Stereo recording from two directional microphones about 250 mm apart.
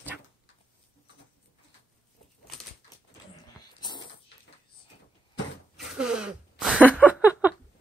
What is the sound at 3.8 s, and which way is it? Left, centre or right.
Dog, centre.